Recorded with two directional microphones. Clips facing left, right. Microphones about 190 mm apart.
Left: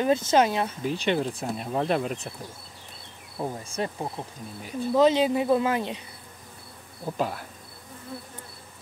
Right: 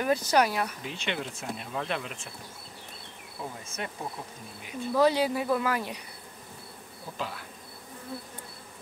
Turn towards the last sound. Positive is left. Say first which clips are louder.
# left 8 dB
turn(degrees=45)  # may be behind; listen again after turning